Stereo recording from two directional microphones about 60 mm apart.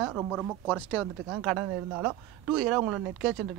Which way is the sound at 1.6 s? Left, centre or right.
Right.